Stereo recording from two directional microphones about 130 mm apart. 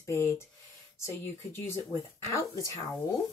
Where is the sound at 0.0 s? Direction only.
20° left (ahead or behind).